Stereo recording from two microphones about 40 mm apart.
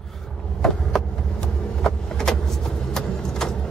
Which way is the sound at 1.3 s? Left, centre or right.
Centre.